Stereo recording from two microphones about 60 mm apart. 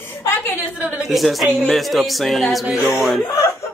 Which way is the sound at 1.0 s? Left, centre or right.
Centre.